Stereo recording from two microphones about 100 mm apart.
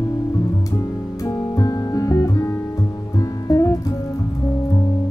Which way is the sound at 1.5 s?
35° left (ahead or behind).